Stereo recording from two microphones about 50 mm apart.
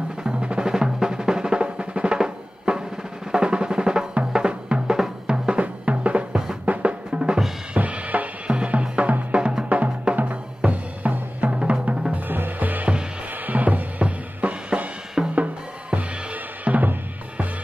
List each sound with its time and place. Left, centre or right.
0.2 s drum: centre
4.3 s music: centre
5.2 s drum: centre
7.7 s drum kit: right
8.5 s drum: right
9.3 s music: centre
10.1 s drum: right
12.1 s music: right
13.5 s drum kit: right
15.3 s drum: right